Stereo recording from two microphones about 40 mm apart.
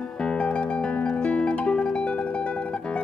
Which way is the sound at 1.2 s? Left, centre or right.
Left.